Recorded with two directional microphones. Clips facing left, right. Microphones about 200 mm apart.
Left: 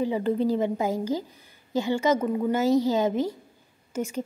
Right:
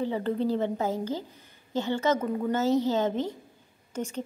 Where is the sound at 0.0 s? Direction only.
10° left (ahead or behind).